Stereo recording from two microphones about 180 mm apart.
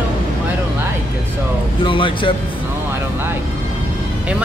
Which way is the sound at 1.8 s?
30° left (ahead or behind).